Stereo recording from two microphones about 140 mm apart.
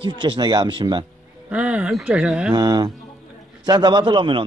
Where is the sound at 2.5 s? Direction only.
30° right (ahead or behind).